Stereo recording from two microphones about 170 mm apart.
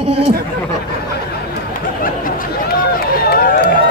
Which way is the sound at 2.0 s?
55° left (ahead or behind).